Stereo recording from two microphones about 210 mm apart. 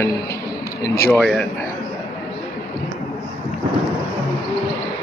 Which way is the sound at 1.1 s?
5° left (ahead or behind).